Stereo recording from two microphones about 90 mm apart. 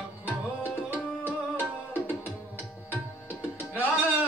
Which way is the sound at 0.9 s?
20° right (ahead or behind).